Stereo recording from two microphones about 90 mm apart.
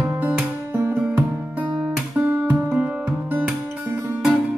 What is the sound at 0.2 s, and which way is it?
Music, 15° right (ahead or behind).